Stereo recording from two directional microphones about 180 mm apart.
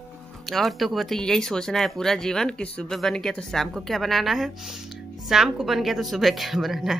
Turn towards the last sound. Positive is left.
turn(degrees=0)  # may be behind; listen again after turning